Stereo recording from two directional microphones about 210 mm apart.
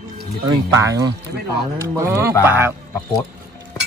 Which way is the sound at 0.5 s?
15° right (ahead or behind).